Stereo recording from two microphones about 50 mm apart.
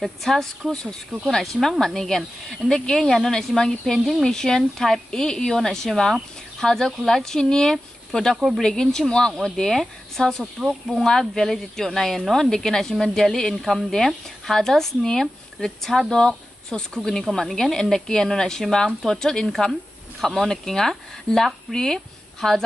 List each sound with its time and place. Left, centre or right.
0.2 s speech: centre
21.3 s speech: left